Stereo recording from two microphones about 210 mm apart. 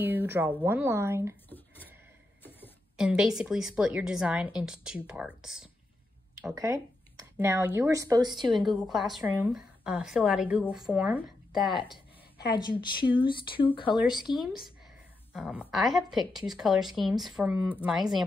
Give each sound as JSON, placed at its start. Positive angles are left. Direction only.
{"t": 0.0, "sound": "speech", "side_deg": -10}
{"t": 3.0, "sound": "a woman's voice", "side_deg": -5}
{"t": 6.4, "sound": "speech", "side_deg": -15}
{"t": 8.5, "sound": "a woman's voice", "side_deg": 0}
{"t": 12.4, "sound": "speech", "side_deg": 20}
{"t": 14.4, "sound": "a woman's voice", "side_deg": 0}